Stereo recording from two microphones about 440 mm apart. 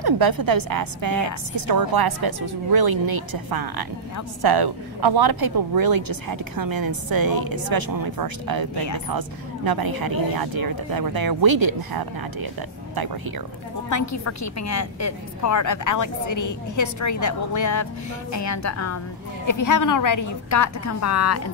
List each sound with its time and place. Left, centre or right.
0.0 s a woman's voice: right
13.8 s a woman's voice: left